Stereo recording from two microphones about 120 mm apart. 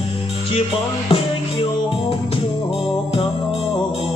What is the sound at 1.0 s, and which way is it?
Music, 50° left (ahead or behind).